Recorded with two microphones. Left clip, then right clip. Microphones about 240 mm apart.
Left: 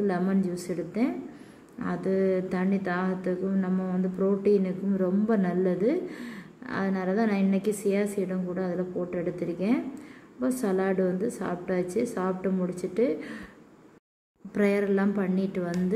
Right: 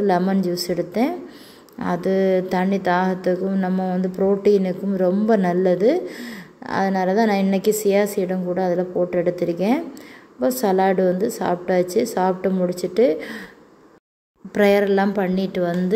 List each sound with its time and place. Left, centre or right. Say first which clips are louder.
0.0 s speech: right 9 dB; centre
14.5 s speech: right 9 dB; centre